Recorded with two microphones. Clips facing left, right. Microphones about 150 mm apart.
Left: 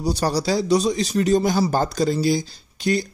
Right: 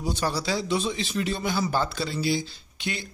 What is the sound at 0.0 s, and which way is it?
Speech, 40° left (ahead or behind).